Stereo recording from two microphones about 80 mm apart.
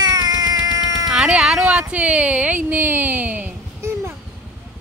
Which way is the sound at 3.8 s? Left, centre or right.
Right.